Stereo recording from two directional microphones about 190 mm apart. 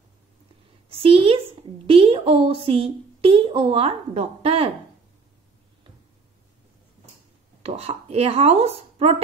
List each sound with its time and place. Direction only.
0.8 s a woman's voice: 30° right (ahead or behind)
7.6 s speech: 30° right (ahead or behind)